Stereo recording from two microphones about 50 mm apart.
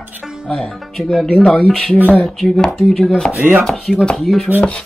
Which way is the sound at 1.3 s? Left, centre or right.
Centre.